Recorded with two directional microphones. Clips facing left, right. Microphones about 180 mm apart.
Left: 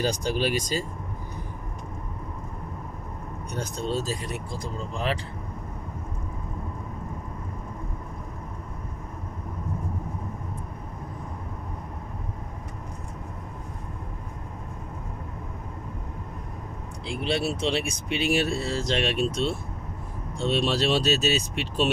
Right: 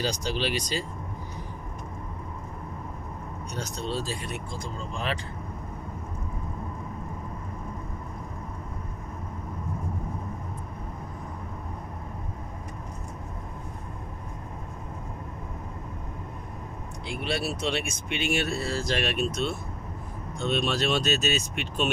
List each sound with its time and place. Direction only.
0.0 s speech: 50° left (ahead or behind)
3.5 s speech: 45° left (ahead or behind)
17.0 s speech: 30° left (ahead or behind)